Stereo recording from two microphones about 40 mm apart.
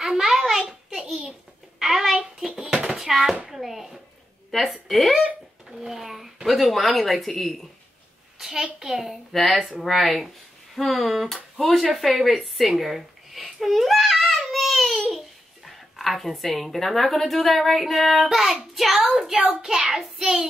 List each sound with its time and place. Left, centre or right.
0.0 s a sound: centre
4.5 s a woman's voice: centre
5.7 s a sound: centre
6.4 s a child's voice: centre
8.4 s a child's voice: centre
19.0 s child singing: centre